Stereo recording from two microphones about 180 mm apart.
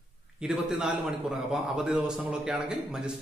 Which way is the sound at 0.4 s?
5° right (ahead or behind).